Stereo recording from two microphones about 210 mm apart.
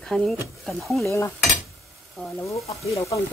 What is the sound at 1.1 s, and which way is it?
Stir, 15° left (ahead or behind).